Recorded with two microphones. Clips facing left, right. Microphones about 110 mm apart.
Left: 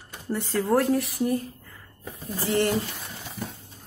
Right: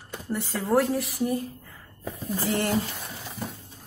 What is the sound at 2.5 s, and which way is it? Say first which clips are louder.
Speech: left 4 dB; centre (ahead or behind).